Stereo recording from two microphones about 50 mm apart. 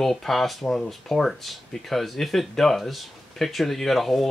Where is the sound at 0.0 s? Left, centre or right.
Centre.